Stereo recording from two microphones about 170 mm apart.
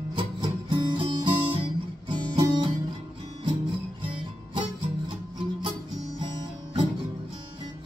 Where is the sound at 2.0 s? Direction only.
30° right (ahead or behind).